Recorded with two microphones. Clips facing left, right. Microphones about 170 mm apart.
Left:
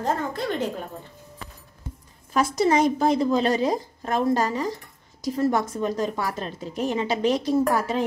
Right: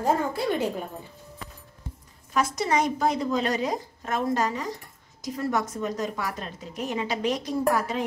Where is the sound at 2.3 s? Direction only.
30° left (ahead or behind).